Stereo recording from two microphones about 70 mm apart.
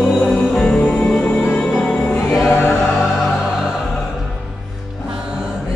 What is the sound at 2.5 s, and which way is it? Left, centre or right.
Music, left.